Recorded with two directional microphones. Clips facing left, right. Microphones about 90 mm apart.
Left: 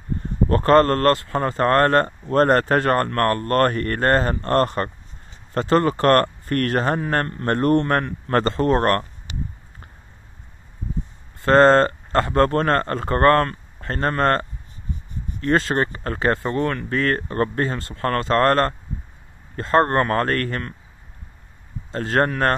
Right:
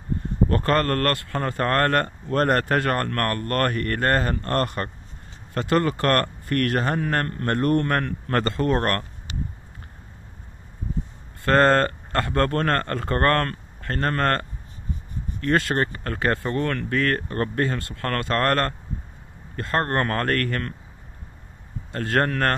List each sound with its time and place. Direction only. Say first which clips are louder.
0.5 s speech: left 8 dB; 30° left (ahead or behind)
7.2 s a man's voice: left 3 dB; 20° left (ahead or behind)
7.5 s speech: left 3 dB; 35° left (ahead or behind)
11.4 s speech: left 4 dB; 25° left (ahead or behind)
15.4 s speech: left 2 dB; 25° left (ahead or behind)
21.9 s speech: left 3 dB; 20° left (ahead or behind)